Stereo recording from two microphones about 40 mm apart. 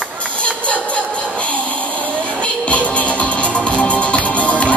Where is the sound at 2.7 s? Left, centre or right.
Left.